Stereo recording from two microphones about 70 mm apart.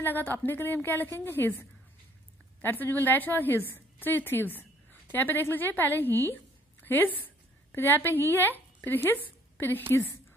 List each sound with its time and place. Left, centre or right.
0.0 s a woman's voice: left